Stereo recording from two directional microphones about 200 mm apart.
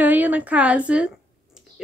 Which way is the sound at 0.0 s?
10° right (ahead or behind).